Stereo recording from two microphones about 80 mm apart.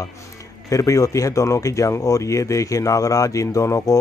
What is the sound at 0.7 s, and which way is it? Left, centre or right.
Speech, left.